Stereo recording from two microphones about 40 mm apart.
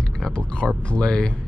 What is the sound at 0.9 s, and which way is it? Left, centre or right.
Speech, left.